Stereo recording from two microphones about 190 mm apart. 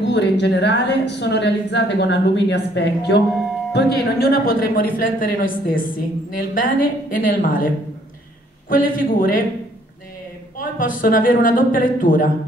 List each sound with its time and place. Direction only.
0.1 s a woman's voice: 65° left (ahead or behind); by 9.4 s 45° left (ahead or behind)
10.6 s a woman's voice: 45° left (ahead or behind)